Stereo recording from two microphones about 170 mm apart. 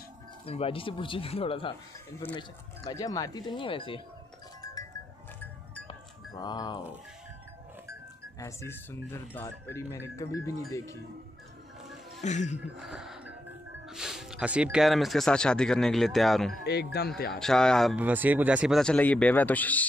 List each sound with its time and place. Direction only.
0.5 s speech: 35° left (ahead or behind)
6.4 s speech: 25° left (ahead or behind)
8.4 s speech: 15° left (ahead or behind)
12.2 s speech: 45° left (ahead or behind)
12.5 s a sound: 5° right (ahead or behind)
13.8 s speech: 5° right (ahead or behind)
16.6 s speech: 70° left (ahead or behind)
17.3 s speech: 5° left (ahead or behind)
17.9 s speech: 10° right (ahead or behind)
18.8 s speech: 5° left (ahead or behind)